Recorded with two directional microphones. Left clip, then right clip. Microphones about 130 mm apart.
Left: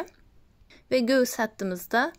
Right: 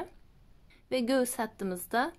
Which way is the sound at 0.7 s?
30° left (ahead or behind).